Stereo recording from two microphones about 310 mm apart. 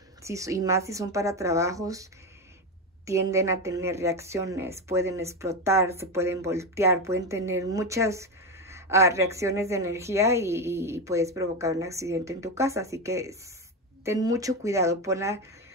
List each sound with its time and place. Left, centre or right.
0.2 s speech: centre
3.1 s speech: centre